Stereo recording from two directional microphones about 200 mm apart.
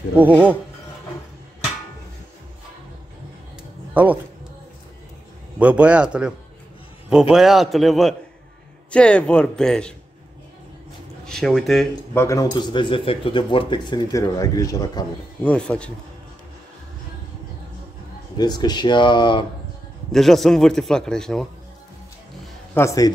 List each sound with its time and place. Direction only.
0.2 s a man's voice: 10° right (ahead or behind)
3.9 s speech: 10° right (ahead or behind)
5.6 s a man's voice: 5° right (ahead or behind)
7.3 s a man's voice: centre (ahead or behind)
11.2 s speech: centre (ahead or behind); by 15.0 s 20° left (ahead or behind)
15.4 s a man's voice: 5° left (ahead or behind)
18.4 s speech: 20° left (ahead or behind)
20.1 s a man's voice: centre (ahead or behind)
22.8 s a man's voice: 15° left (ahead or behind)